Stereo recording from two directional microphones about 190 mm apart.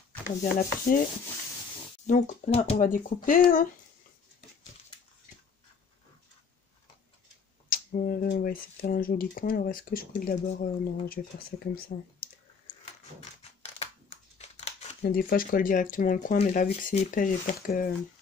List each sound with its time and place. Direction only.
0.6 s speech: 45° left (ahead or behind)
2.0 s speech: 40° left (ahead or behind)
2.8 s speech: 45° left (ahead or behind)
7.7 s speech: 50° left (ahead or behind)
14.4 s crumpling: 35° left (ahead or behind)
15.0 s speech: 50° left (ahead or behind)